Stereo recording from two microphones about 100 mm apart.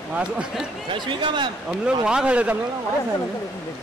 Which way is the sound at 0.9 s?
55° right (ahead or behind).